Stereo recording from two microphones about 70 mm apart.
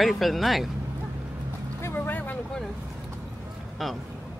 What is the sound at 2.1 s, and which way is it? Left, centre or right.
Vehicle, left.